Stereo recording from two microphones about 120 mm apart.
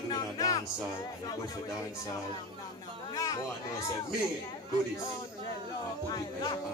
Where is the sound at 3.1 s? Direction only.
30° left (ahead or behind).